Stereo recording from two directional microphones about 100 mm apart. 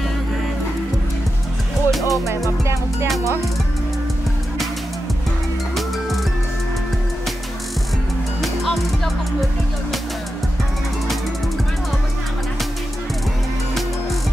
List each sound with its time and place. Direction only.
1.9 s music: centre (ahead or behind)
2.6 s music: 30° right (ahead or behind)
8.4 s music: centre (ahead or behind)